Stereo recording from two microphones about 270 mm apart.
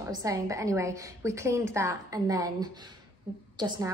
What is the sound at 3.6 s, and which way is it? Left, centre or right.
Speech, centre.